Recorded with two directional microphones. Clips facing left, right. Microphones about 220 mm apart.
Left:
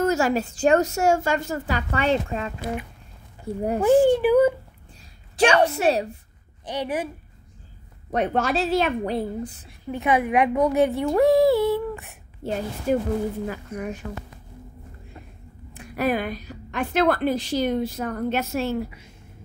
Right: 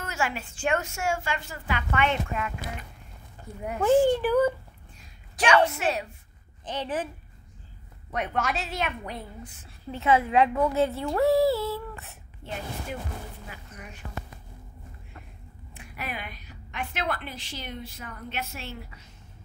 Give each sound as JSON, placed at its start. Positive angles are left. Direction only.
{"t": 0.0, "sound": "a woman's voice", "side_deg": 40}
{"t": 3.8, "sound": "a woman's voice", "side_deg": 15}
{"t": 5.3, "sound": "a sound", "side_deg": 30}
{"t": 5.7, "sound": "a woman's voice", "side_deg": 35}
{"t": 6.6, "sound": "a woman's voice", "side_deg": 10}
{"t": 8.1, "sound": "a woman's voice", "side_deg": 35}
{"t": 9.7, "sound": "a woman's voice", "side_deg": 15}
{"t": 12.4, "sound": "a woman's voice", "side_deg": 40}
{"t": 13.5, "sound": "speech", "side_deg": 60}
{"t": 15.7, "sound": "a woman's voice", "side_deg": 40}